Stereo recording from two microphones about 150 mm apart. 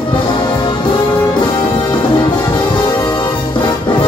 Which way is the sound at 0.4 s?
30° left (ahead or behind).